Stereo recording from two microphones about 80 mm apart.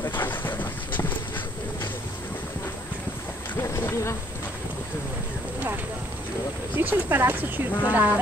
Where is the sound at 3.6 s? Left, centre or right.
Left.